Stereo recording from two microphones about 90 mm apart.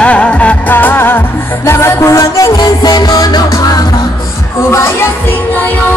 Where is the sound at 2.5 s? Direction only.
50° left (ahead or behind).